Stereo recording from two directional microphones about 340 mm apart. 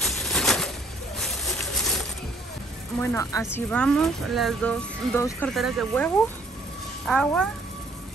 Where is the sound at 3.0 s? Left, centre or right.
Centre.